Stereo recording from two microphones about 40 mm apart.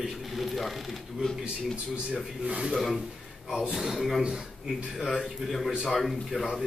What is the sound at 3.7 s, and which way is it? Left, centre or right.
A man's voice, centre.